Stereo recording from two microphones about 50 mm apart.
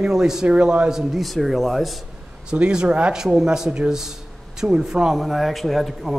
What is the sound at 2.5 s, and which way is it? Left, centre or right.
Speech, centre.